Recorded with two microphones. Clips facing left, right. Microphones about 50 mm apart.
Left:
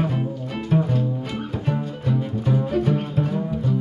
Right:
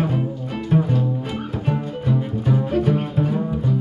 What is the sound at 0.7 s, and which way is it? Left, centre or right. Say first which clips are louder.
Music: right 2 dB; centre.